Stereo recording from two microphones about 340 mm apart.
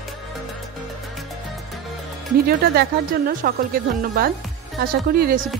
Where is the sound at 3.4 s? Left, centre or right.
Right.